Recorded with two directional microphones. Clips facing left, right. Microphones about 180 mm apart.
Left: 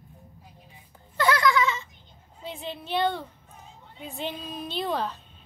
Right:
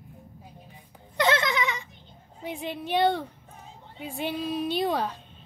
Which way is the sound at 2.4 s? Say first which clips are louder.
Right 3 dB; 15° right (ahead or behind).